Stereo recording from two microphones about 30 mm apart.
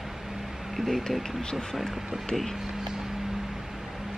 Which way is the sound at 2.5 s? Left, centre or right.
Centre.